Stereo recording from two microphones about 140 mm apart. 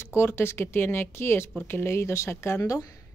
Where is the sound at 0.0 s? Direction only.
20° left (ahead or behind).